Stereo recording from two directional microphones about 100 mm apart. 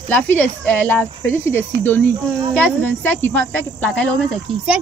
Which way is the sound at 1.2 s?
25° left (ahead or behind).